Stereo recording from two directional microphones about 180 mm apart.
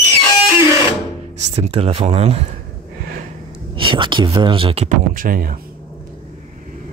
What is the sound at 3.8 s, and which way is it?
Speech, 25° right (ahead or behind).